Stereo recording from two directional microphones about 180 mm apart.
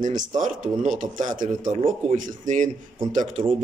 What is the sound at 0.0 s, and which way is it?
A man's voice, 45° right (ahead or behind).